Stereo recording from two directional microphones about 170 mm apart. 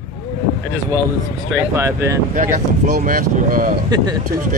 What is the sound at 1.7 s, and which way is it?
Speech, 15° right (ahead or behind).